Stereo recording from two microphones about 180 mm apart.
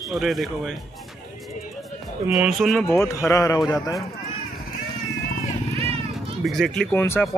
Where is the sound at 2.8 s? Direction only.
15° left (ahead or behind).